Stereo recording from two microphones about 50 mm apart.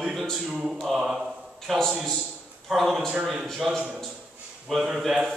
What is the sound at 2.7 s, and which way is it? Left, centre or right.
A man's voice, centre.